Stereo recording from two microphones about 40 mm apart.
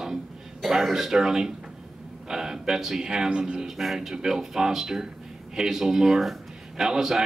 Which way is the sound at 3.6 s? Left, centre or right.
Centre.